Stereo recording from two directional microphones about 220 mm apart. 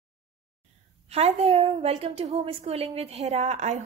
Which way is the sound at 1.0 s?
30° right (ahead or behind).